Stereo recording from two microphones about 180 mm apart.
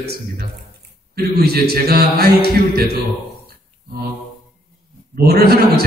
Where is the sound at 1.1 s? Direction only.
60° right (ahead or behind).